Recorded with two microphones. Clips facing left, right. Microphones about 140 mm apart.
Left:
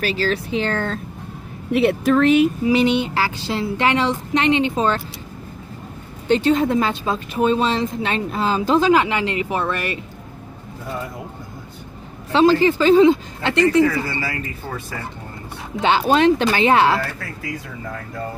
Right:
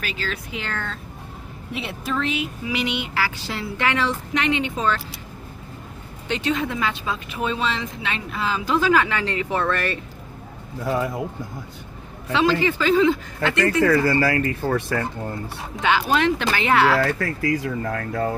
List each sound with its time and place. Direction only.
0.0 s a woman's voice: 35° left (ahead or behind)
1.7 s speech: 60° left (ahead or behind)
2.6 s speech: 35° left (ahead or behind)
6.2 s a woman's voice: 40° left (ahead or behind)
8.6 s speech: 25° left (ahead or behind)
12.3 s speech: 35° left (ahead or behind)
14.2 s speech: 75° right (ahead or behind)
15.8 s speech: 30° left (ahead or behind)
17.0 s speech: 80° right